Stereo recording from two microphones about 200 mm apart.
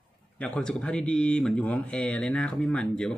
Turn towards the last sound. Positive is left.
turn(degrees=5)  # may be behind; listen again after turning